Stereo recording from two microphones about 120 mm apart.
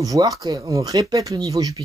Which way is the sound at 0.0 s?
30° right (ahead or behind).